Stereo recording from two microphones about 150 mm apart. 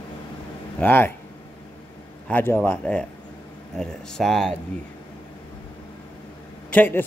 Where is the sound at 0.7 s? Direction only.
15° left (ahead or behind).